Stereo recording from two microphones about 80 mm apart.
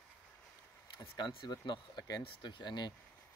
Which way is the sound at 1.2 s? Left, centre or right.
Left.